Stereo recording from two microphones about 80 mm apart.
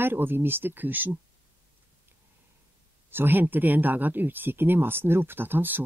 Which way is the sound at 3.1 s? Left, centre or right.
Right.